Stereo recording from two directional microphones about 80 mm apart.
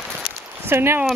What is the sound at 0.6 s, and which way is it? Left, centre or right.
Speech, right.